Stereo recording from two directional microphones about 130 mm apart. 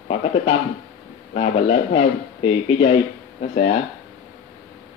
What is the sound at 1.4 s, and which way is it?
Speech, 50° left (ahead or behind).